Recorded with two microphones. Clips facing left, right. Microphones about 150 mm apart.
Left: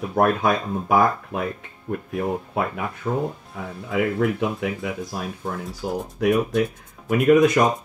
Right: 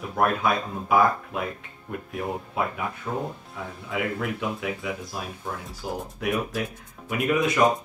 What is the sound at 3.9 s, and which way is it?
Speech, 45° left (ahead or behind).